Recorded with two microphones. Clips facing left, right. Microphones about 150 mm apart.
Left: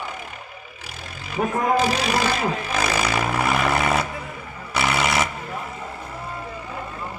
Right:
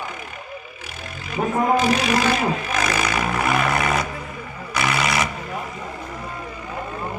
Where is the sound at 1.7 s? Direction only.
35° left (ahead or behind).